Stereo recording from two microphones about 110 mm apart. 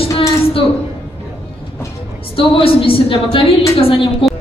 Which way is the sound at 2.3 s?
55° left (ahead or behind).